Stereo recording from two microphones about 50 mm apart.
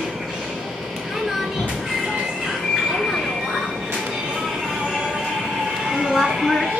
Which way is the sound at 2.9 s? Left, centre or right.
Centre.